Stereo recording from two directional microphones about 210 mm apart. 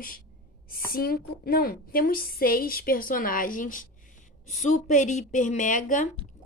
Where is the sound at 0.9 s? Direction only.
45° left (ahead or behind).